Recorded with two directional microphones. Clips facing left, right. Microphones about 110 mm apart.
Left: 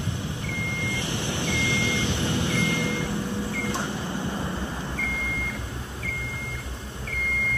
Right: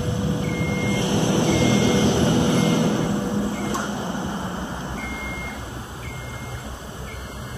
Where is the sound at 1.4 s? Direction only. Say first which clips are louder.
Right 8 dB; 30° right (ahead or behind).